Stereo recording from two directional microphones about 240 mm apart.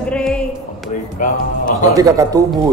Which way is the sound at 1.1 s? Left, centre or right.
Left.